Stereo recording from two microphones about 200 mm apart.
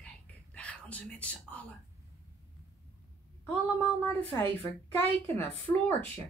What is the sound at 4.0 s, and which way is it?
Speech, 10° left (ahead or behind).